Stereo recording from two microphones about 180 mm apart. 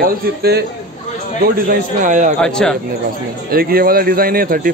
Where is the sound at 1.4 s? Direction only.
50° right (ahead or behind).